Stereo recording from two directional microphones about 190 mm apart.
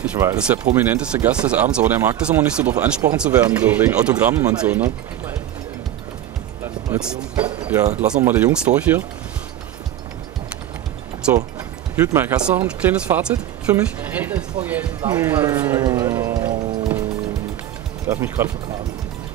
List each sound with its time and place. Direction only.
0.0 s speech: 10° right (ahead or behind)
6.9 s speech: 5° right (ahead or behind)
11.9 s speech: 10° right (ahead or behind)
15.8 s music: 15° right (ahead or behind)
18.0 s speech: 15° right (ahead or behind)